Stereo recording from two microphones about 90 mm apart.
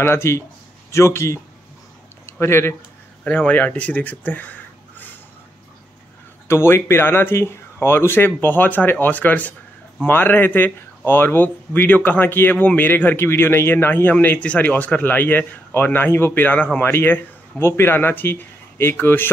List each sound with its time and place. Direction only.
0.0 s speech: 30° left (ahead or behind)
2.4 s speech: 30° left (ahead or behind)
3.3 s speech: 15° left (ahead or behind)
6.4 s speech: 30° left (ahead or behind)